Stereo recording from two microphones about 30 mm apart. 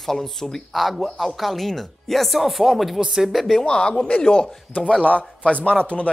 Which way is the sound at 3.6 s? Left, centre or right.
Left.